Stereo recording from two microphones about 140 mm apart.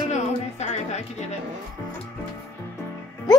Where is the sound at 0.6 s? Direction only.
50° left (ahead or behind).